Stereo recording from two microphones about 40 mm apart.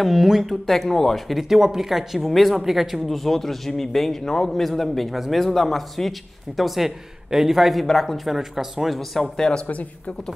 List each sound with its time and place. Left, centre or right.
0.0 s speech: centre
0.7 s speech: centre
7.8 s speech: centre
8.3 s speech: centre
9.2 s speech: centre
9.7 s speech: left